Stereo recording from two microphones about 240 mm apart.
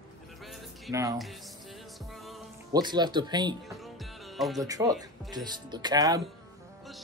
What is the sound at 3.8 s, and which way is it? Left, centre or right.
Music, centre.